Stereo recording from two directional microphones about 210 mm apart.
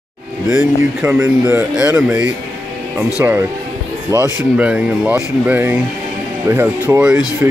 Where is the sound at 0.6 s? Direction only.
10° right (ahead or behind).